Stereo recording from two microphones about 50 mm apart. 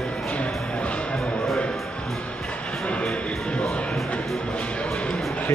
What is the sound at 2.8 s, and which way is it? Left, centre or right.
Music, left.